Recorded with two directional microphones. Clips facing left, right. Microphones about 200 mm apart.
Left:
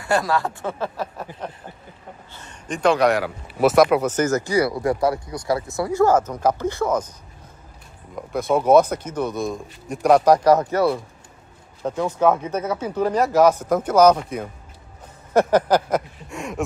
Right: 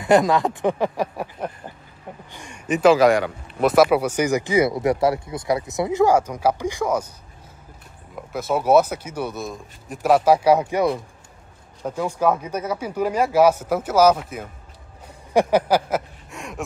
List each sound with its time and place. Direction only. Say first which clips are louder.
0.0 s speech: right 5 dB; 20° right (ahead or behind)
8.3 s speech: left 2 dB; 5° right (ahead or behind)
15.3 s a sound: left 1 dB; 10° right (ahead or behind)